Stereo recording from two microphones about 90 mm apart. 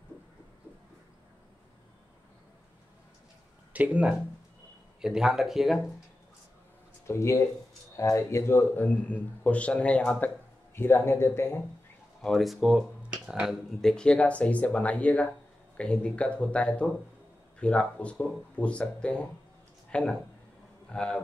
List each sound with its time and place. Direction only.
3.7 s speech: 15° right (ahead or behind)
7.1 s speech: 35° left (ahead or behind); by 10.3 s 15° left (ahead or behind)
10.7 s speech: 25° left (ahead or behind)
12.2 s speech: 5° left (ahead or behind)
13.7 s a man's voice: 10° left (ahead or behind)